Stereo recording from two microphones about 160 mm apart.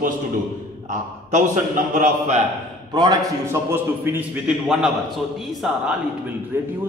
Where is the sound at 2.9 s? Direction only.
20° right (ahead or behind).